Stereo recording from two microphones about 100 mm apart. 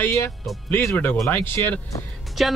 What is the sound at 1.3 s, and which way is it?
Speech, 20° left (ahead or behind).